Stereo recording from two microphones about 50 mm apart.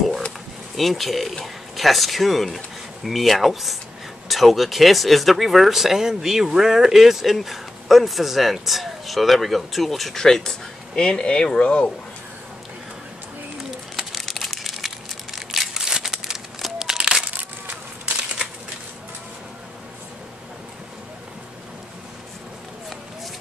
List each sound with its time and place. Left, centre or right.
0.7 s speech: centre; by 11.9 s left
13.7 s bird: centre
14.2 s crumpling: centre
17.3 s a sound: right